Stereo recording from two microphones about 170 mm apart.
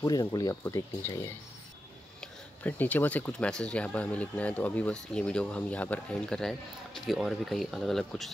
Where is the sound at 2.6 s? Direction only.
10° left (ahead or behind).